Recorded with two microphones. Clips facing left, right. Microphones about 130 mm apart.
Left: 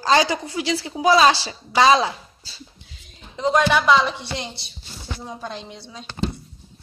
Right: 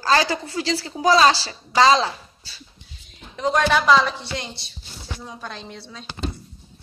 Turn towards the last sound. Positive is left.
turn(degrees=20)  # may be behind; listen again after turning